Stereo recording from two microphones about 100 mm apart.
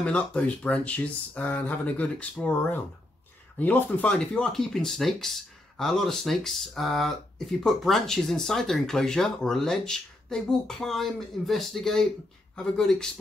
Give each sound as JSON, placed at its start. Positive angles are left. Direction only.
{"t": 0.0, "sound": "speech", "side_deg": 10}
{"t": 3.5, "sound": "speech", "side_deg": 20}
{"t": 4.2, "sound": "speech", "side_deg": 5}